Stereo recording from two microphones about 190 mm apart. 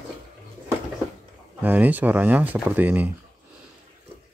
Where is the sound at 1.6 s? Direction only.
10° right (ahead or behind).